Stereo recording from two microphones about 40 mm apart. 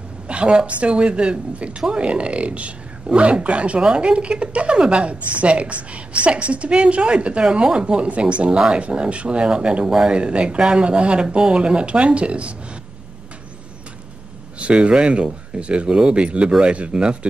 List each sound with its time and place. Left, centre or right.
0.3 s speech: right
7.8 s speech: right
8.5 s speech: right
9.8 s speech: centre
10.1 s speech: right
14.6 s speech: right